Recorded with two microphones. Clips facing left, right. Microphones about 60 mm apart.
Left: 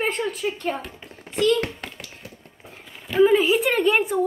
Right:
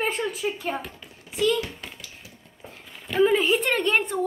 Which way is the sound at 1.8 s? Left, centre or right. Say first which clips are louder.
Left 4 dB; left.